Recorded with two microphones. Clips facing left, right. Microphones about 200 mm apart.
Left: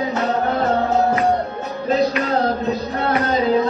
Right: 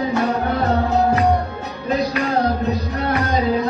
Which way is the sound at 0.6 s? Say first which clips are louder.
Right 1 dB; 25° left (ahead or behind).